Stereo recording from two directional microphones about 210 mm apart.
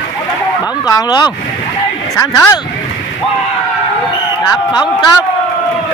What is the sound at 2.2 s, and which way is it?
Speech, 15° left (ahead or behind).